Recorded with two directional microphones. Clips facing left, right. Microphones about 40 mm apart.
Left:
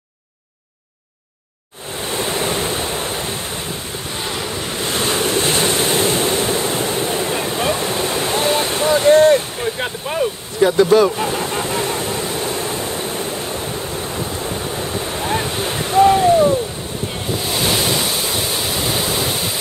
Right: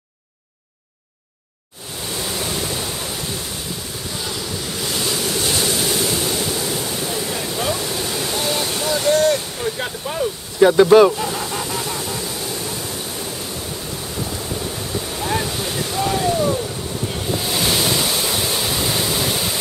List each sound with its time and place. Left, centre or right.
2.0 s waves: left
10.6 s speech: centre
11.1 s a sound: left
14.4 s waves: left
17.4 s waves: centre